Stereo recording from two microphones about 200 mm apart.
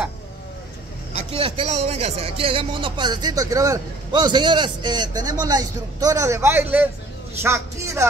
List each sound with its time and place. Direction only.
1.1 s a man's voice: 25° right (ahead or behind)